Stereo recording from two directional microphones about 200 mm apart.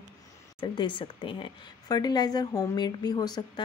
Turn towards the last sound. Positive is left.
turn(degrees=20)  # may be behind; listen again after turning